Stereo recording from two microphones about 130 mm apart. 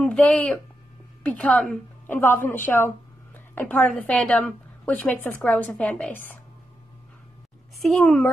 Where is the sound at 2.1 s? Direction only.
15° left (ahead or behind).